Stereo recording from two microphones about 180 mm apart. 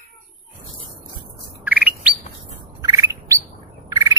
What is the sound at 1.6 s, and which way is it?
Bird, 10° right (ahead or behind).